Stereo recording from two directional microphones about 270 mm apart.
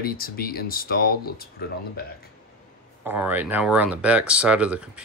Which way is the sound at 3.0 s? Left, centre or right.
Centre.